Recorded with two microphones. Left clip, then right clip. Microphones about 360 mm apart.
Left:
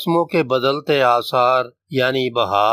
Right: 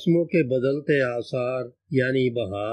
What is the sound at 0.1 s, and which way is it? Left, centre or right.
Speech, left.